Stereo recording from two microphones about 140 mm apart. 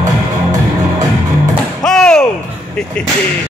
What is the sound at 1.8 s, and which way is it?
Slam, 5° left (ahead or behind).